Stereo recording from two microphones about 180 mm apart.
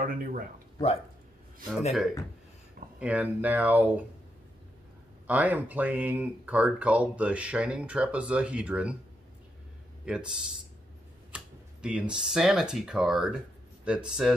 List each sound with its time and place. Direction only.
0.0 s speech: 50° right (ahead or behind)
1.9 s speech: centre (ahead or behind)
5.2 s speech: 10° right (ahead or behind)
10.0 s speech: 5° right (ahead or behind)